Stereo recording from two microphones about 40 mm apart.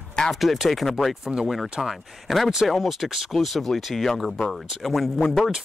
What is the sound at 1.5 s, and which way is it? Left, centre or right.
Speech, centre.